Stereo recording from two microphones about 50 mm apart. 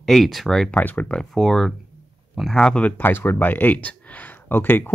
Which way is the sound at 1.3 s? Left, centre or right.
Centre.